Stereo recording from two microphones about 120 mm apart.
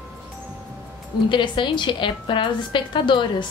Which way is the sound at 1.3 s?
40° left (ahead or behind).